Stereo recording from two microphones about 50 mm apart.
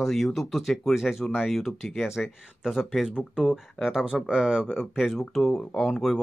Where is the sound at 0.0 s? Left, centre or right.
Centre.